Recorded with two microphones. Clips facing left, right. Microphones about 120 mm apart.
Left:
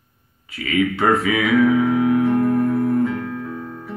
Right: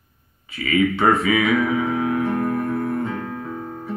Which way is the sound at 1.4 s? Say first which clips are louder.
Left 4 dB; 30° right (ahead or behind).